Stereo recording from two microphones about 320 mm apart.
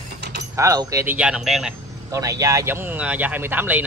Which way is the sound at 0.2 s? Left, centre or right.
Right.